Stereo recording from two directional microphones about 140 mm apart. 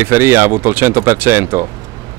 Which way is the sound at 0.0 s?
15° right (ahead or behind).